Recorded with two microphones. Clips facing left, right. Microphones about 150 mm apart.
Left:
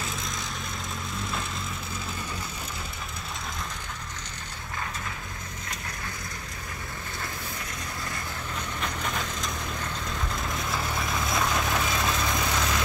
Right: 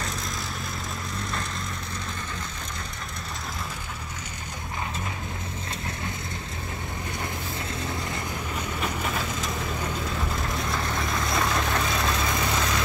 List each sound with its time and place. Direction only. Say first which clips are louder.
8.5 s vehicle: right 3 dB; 5° right (ahead or behind)
10.5 s vehicle: right 2 dB; centre (ahead or behind)